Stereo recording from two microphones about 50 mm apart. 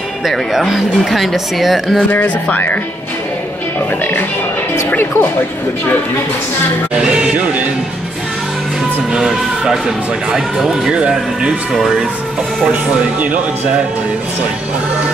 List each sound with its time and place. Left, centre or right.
0.3 s speech: centre
10.3 s speech: centre
10.9 s speech: right